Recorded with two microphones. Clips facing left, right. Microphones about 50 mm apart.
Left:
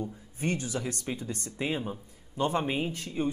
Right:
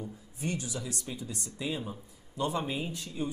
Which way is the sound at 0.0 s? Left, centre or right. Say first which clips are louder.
Left 4 dB; left.